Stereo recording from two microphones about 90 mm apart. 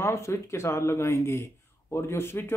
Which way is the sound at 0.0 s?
30° left (ahead or behind).